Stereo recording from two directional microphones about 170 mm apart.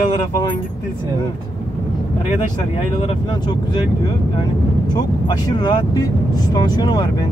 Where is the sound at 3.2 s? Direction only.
25° left (ahead or behind).